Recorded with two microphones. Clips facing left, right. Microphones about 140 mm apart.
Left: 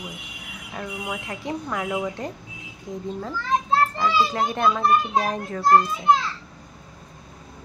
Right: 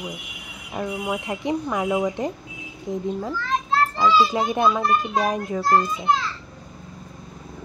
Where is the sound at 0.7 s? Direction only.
15° right (ahead or behind).